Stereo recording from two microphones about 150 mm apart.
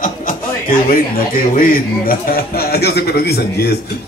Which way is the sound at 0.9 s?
70° left (ahead or behind).